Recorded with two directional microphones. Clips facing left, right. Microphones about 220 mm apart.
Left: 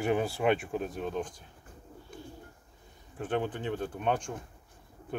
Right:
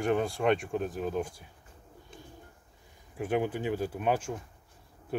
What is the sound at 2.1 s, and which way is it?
Bird, 25° right (ahead or behind).